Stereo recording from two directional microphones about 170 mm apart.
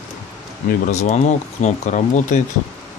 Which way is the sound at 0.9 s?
40° left (ahead or behind).